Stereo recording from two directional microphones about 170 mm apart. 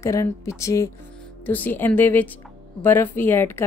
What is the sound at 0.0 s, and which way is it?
Speech, 15° left (ahead or behind).